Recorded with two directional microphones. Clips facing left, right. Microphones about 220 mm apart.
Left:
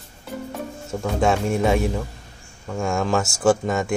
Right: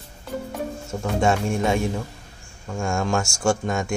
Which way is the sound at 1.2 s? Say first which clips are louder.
Left 2 dB; centre (ahead or behind).